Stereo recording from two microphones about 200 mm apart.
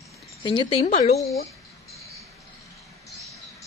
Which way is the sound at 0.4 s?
25° left (ahead or behind).